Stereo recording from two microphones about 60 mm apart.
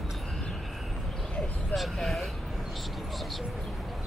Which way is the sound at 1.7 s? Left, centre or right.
Centre.